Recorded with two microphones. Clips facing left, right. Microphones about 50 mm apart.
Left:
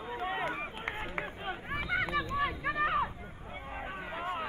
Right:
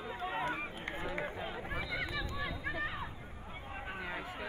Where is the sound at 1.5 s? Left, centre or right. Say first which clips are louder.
Left 4 dB; left.